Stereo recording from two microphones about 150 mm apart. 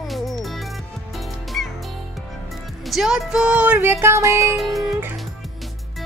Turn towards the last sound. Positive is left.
turn(degrees=0)  # may be behind; listen again after turning